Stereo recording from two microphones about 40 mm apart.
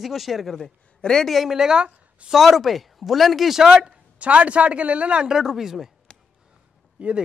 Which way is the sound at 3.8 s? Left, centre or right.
Right.